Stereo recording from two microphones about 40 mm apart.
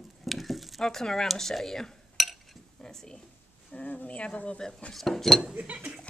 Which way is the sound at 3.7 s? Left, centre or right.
Left.